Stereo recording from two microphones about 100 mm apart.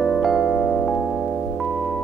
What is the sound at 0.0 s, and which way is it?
Music, centre (ahead or behind).